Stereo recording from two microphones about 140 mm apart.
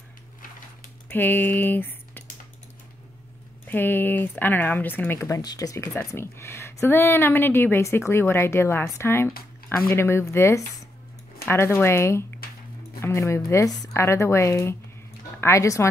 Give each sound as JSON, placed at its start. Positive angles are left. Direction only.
{"t": 1.0, "sound": "speech", "side_deg": 15}
{"t": 3.6, "sound": "speech", "side_deg": 15}